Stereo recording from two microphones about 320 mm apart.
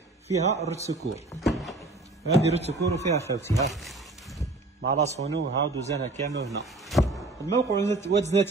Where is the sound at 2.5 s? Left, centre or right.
Centre.